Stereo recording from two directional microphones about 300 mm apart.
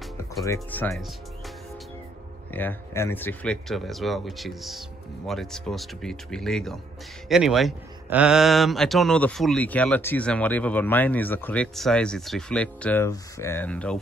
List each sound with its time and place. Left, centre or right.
0.2 s speech: centre
2.5 s speech: centre